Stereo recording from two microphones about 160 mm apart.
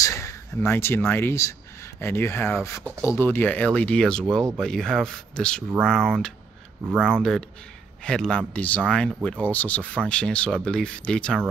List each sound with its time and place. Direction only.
0.0 s speech: 20° left (ahead or behind)